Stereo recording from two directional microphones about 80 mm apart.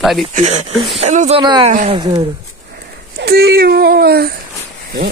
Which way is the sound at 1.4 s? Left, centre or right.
Right.